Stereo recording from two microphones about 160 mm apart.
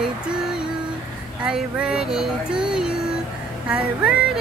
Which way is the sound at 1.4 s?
5° right (ahead or behind).